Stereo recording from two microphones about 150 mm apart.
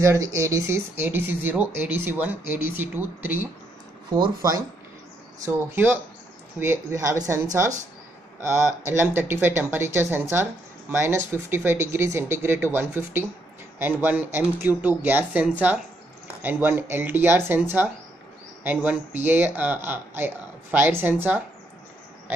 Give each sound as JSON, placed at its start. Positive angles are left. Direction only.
{"t": 0.0, "sound": "speech", "side_deg": -20}
{"t": 4.4, "sound": "speech", "side_deg": -20}